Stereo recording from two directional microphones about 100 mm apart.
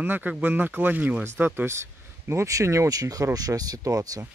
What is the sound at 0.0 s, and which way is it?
Speech, 20° right (ahead or behind).